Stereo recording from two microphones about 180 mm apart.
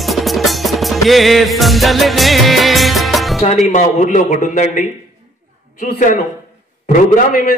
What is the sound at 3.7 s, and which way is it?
A man's voice, 45° left (ahead or behind).